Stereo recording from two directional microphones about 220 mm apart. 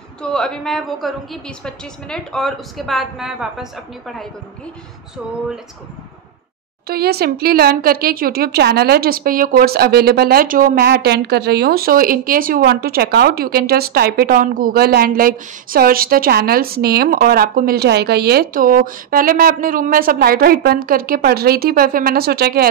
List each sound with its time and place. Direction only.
0.2 s a woman's voice: 5° left (ahead or behind)
6.9 s speech: 45° right (ahead or behind)